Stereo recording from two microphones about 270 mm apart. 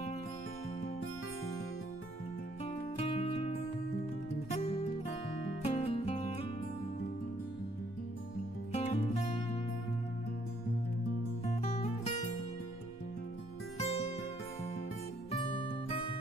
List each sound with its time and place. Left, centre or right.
2.6 s music: left
4.6 s music: left
8.7 s music: left
11.6 s music: left
13.7 s music: left
15.3 s music: centre